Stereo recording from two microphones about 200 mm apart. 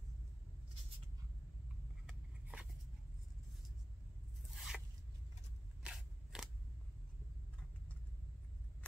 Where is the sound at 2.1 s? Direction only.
5° right (ahead or behind).